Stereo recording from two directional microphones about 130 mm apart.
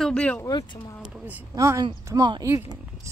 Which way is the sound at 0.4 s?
30° left (ahead or behind).